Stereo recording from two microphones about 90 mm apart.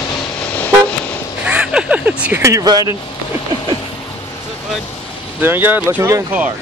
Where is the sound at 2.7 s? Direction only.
45° right (ahead or behind).